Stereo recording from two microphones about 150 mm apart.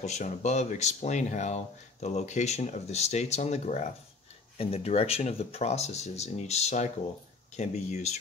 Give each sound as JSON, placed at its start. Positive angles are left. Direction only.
{"t": 0.0, "sound": "speech", "side_deg": 50}